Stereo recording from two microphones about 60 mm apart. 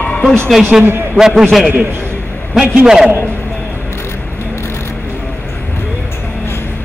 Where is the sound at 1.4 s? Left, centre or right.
Centre.